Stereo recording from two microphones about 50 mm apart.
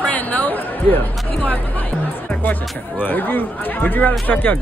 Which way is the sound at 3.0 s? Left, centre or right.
Left.